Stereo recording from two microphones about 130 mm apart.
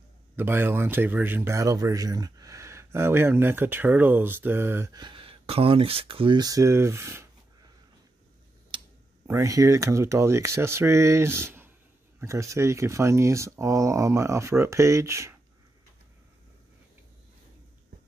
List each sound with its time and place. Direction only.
0.4 s speech: 15° right (ahead or behind)
4.9 s speech: 40° right (ahead or behind); by 7.2 s 20° right (ahead or behind)
9.3 s speech: 25° right (ahead or behind)